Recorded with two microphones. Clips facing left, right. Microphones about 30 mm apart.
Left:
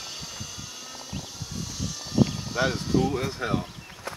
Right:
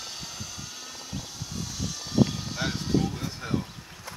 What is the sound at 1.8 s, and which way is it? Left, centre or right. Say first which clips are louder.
Vehicle: even; centre.